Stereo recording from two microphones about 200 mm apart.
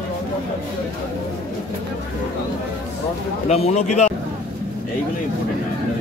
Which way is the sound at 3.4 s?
30° left (ahead or behind).